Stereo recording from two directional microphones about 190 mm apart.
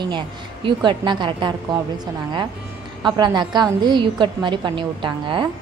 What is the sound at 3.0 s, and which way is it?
A woman's voice, 25° right (ahead or behind).